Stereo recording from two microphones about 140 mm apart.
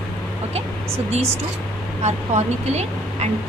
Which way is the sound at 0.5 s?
45° right (ahead or behind).